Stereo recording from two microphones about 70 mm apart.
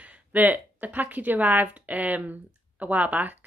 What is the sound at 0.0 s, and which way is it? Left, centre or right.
A woman's voice, right.